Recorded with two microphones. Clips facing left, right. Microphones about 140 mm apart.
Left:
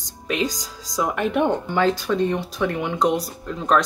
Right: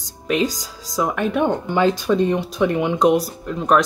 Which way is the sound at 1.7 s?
20° right (ahead or behind).